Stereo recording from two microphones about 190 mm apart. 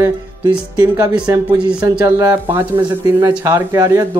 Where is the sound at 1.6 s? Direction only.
5° right (ahead or behind).